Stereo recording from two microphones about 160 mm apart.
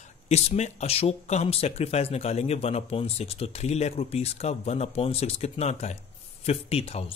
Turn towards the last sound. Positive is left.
turn(degrees=40)  # may be behind; listen again after turning